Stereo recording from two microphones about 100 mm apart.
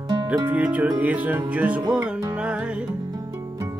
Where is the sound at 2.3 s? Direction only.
10° right (ahead or behind).